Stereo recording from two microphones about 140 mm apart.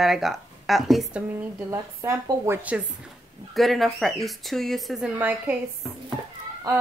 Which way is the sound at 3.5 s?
Centre (ahead or behind).